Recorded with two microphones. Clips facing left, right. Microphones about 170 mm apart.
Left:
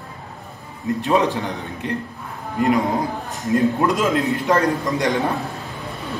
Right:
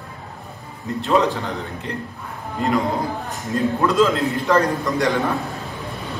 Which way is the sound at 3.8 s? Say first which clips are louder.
Right 1 dB; 15° left (ahead or behind).